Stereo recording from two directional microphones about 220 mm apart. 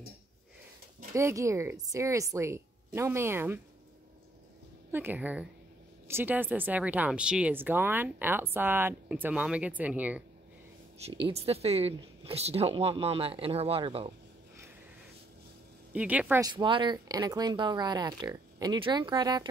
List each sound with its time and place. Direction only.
1.1 s speech: 15° right (ahead or behind)
4.9 s speech: 10° right (ahead or behind)
11.2 s speech: 25° right (ahead or behind)
15.9 s speech: 5° right (ahead or behind)